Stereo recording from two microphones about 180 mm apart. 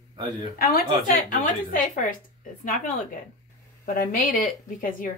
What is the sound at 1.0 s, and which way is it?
Speech, 45° left (ahead or behind).